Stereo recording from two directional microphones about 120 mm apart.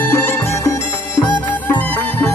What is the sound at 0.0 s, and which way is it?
Music, 20° left (ahead or behind).